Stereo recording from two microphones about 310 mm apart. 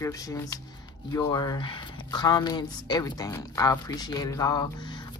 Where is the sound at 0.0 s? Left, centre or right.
Centre.